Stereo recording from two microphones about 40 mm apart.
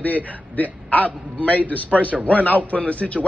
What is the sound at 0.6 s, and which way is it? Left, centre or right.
A man's voice, left.